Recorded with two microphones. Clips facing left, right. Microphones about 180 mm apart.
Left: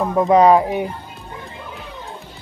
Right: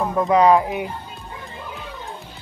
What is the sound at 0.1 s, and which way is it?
Speech, 30° left (ahead or behind).